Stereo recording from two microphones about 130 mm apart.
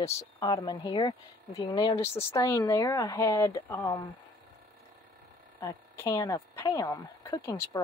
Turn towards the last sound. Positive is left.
turn(degrees=25)  # may be behind; listen again after turning